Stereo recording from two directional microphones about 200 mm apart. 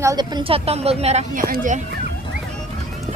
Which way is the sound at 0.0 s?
20° right (ahead or behind).